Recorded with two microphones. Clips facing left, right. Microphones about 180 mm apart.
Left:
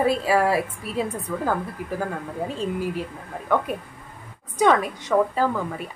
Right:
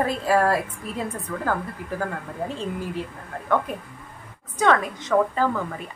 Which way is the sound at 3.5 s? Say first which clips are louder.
Left 1 dB; 10° left (ahead or behind).